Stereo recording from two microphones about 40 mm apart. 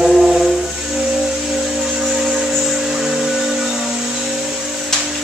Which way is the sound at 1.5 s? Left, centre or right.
Centre.